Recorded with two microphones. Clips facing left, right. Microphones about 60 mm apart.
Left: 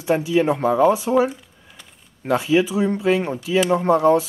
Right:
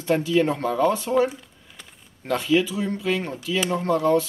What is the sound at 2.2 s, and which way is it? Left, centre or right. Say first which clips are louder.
Speech: left 3 dB; centre.